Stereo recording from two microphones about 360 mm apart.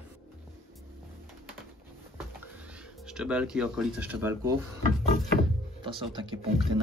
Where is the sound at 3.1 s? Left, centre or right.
Centre.